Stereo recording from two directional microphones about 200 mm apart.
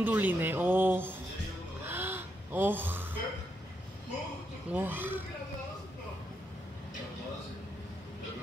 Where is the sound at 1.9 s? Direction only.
10° right (ahead or behind).